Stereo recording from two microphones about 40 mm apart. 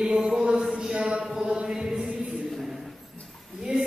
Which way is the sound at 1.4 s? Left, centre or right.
Right.